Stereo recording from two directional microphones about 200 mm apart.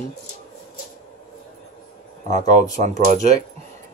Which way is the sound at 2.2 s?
35° right (ahead or behind).